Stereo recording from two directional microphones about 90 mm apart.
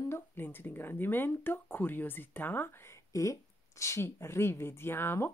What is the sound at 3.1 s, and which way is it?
A woman's voice, 35° left (ahead or behind).